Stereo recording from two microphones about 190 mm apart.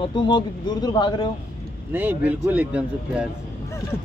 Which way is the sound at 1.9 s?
10° right (ahead or behind).